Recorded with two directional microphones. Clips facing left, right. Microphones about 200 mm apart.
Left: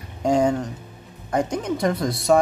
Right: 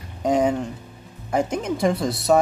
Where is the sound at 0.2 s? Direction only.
5° right (ahead or behind).